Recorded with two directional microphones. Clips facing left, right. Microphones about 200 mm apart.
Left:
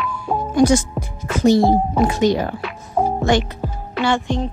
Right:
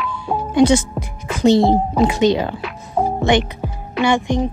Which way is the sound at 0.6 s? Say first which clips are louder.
Right 1 dB; 25° right (ahead or behind).